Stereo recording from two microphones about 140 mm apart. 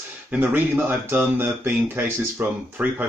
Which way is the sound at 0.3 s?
10° right (ahead or behind).